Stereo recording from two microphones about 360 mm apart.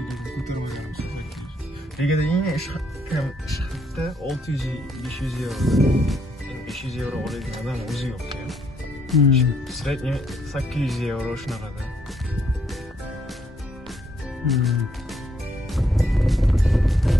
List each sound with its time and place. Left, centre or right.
2.0 s speech: centre
14.5 s music: centre